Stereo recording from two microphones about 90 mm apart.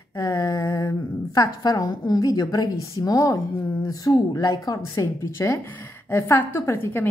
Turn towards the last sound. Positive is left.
turn(degrees=25)  # may be behind; listen again after turning